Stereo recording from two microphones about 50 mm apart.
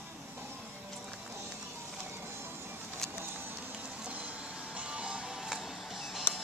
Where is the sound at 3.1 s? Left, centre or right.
Right.